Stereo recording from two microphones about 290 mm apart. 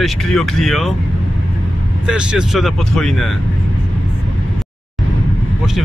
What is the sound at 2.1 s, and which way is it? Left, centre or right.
Speech, centre.